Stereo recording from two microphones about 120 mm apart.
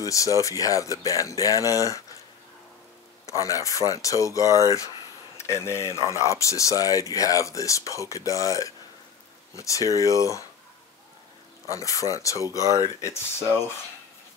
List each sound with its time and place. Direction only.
0.0 s speech: 25° left (ahead or behind)
3.3 s speech: 30° left (ahead or behind)
5.9 s speech: 30° right (ahead or behind)
6.2 s speech: 25° left (ahead or behind)
11.7 s speech: 25° left (ahead or behind)
12.4 s speech: 30° right (ahead or behind)
13.0 s speech: 20° left (ahead or behind)